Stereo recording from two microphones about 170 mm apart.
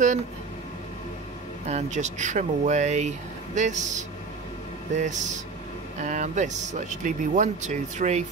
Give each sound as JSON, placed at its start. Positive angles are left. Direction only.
{"t": 1.7, "sound": "speech", "side_deg": -45}